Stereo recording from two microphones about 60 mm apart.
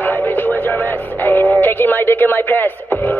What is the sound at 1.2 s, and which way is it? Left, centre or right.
Radio, left.